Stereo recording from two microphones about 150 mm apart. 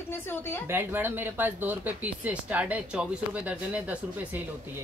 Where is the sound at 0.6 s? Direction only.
15° right (ahead or behind).